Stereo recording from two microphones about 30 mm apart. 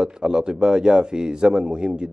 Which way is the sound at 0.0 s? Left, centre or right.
Right.